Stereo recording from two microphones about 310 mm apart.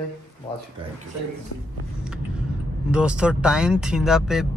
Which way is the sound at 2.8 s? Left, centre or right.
Centre.